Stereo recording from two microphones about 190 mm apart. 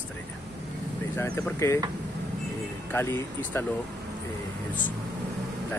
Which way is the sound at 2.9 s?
10° left (ahead or behind).